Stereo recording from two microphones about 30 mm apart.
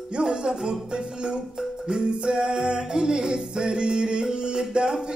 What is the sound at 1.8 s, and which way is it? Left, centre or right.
Music, right.